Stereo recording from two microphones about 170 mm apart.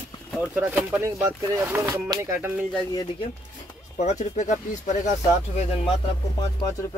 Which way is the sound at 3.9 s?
45° left (ahead or behind).